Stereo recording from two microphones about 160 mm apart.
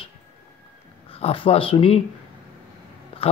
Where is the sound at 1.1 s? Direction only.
35° left (ahead or behind).